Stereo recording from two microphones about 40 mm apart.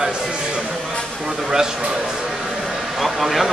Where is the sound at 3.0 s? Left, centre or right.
Centre.